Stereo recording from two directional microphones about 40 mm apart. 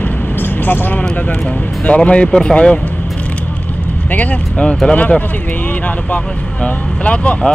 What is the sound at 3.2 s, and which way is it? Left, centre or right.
Vehicle, left.